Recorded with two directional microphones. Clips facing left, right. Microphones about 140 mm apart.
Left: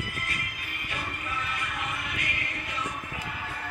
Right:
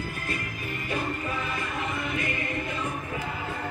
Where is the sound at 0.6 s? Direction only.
35° right (ahead or behind).